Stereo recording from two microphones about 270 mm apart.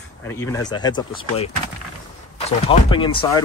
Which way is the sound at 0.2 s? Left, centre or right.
Centre.